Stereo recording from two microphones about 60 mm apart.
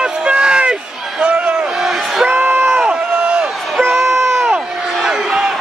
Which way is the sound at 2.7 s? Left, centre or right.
Centre.